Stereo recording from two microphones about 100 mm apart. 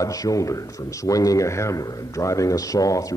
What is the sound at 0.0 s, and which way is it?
A man's voice, 35° left (ahead or behind).